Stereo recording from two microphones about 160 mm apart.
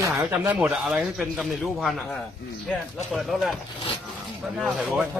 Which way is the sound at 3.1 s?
Centre (ahead or behind).